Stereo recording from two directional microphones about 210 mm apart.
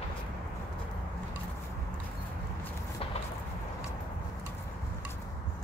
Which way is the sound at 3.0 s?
25° left (ahead or behind).